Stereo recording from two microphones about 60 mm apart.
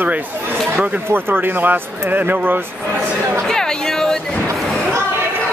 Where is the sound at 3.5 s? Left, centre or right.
Centre.